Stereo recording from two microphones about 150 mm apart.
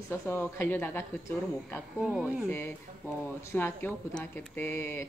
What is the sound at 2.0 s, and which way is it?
Speech, 5° right (ahead or behind).